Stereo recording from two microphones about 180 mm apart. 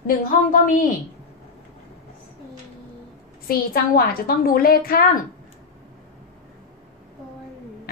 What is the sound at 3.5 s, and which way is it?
A woman's voice, 55° left (ahead or behind).